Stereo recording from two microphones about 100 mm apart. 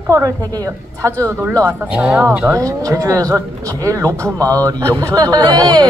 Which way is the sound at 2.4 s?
35° right (ahead or behind).